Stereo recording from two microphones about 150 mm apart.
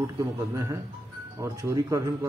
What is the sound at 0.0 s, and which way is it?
Speech, 20° right (ahead or behind).